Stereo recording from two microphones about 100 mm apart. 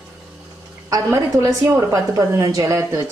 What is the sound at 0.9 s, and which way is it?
A woman's voice, 25° right (ahead or behind).